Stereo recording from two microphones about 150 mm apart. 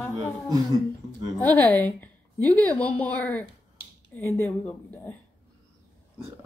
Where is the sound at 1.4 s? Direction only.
10° left (ahead or behind).